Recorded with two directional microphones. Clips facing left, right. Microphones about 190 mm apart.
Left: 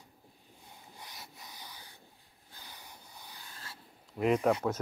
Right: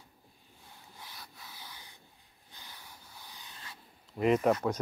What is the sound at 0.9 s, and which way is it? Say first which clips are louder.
Rub: even; 15° left (ahead or behind).